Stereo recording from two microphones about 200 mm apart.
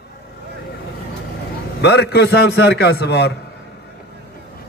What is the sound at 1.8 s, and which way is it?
A man's voice, 55° left (ahead or behind).